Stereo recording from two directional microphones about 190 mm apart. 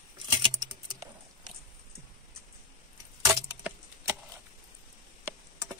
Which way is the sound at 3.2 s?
15° right (ahead or behind).